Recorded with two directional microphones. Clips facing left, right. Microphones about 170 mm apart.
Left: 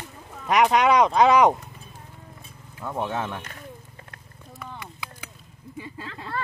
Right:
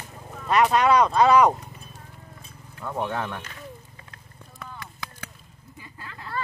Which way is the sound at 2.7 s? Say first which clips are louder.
Even; 5° left (ahead or behind).